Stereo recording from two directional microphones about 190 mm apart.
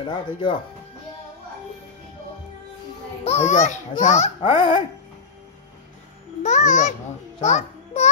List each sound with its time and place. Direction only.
0.0 s speech: 25° left (ahead or behind)
3.3 s a child's voice: 35° left (ahead or behind)
4.6 s speech: 25° left (ahead or behind)
6.4 s a child's voice: 40° left (ahead or behind)